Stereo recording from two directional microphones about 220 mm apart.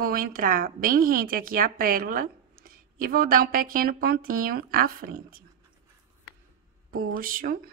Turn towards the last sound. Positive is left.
turn(degrees=-40)  # may be behind; listen again after turning